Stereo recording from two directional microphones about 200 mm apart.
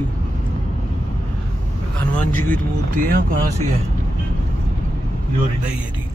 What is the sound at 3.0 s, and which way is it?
Speech, 50° right (ahead or behind).